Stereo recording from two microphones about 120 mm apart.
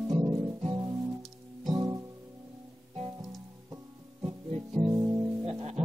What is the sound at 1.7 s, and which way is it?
Music, 30° right (ahead or behind).